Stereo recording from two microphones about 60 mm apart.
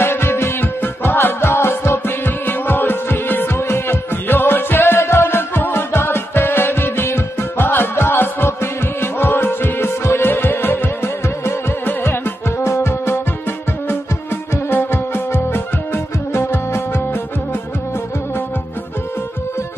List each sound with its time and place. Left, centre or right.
0.0 s music: left
14.7 s music: left